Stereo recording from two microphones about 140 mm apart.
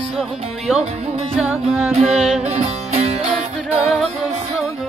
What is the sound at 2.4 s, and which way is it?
Music, 50° right (ahead or behind).